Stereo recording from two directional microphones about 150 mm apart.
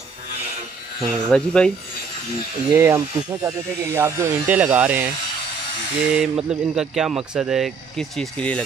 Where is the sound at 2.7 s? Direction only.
20° right (ahead or behind).